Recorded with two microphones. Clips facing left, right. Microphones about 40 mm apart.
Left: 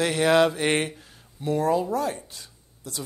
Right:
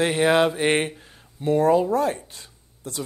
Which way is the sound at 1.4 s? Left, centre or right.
Right.